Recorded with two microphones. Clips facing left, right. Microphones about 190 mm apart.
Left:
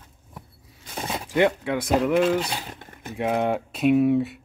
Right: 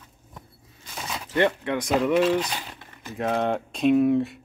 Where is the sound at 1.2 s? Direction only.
10° left (ahead or behind).